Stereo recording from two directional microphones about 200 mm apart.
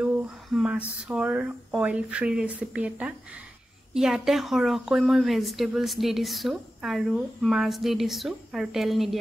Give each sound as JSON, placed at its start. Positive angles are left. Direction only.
{"t": 0.0, "sound": "speech", "side_deg": -5}